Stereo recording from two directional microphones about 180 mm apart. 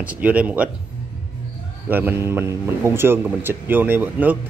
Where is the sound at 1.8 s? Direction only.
10° right (ahead or behind).